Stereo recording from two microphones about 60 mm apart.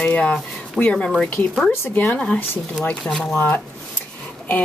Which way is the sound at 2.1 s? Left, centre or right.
Centre.